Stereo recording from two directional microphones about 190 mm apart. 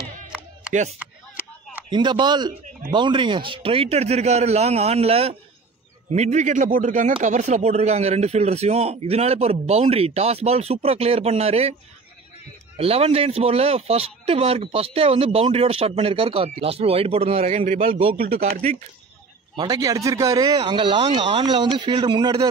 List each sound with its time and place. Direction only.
1.9 s speech: 25° right (ahead or behind)
12.7 s speech: 30° right (ahead or behind)
17.9 s speech: 30° right (ahead or behind)